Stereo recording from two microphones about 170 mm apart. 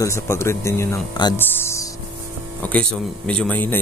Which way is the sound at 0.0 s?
15° left (ahead or behind).